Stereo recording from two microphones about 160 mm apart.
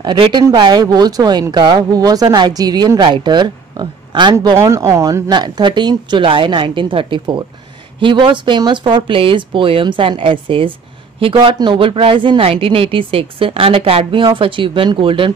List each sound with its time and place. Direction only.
0.0 s a woman's voice: 30° right (ahead or behind)